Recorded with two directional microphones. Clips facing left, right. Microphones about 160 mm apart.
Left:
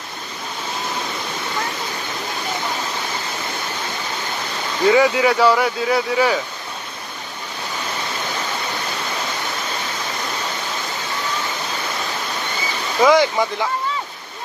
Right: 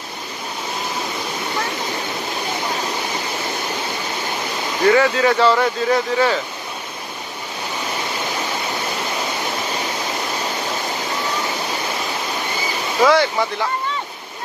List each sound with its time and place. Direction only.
4.8 s speech: 15° left (ahead or behind)
13.0 s speech: 15° left (ahead or behind)